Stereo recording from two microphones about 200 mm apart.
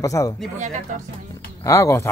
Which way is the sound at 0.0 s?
15° left (ahead or behind).